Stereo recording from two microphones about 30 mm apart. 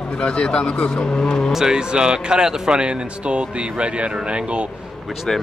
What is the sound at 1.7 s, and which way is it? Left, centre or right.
Speech, right.